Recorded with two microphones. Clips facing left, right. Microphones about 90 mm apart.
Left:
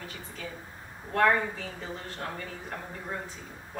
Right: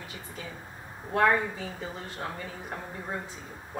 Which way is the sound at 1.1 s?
15° right (ahead or behind).